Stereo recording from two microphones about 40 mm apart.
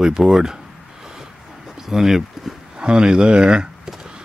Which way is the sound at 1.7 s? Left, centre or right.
Centre.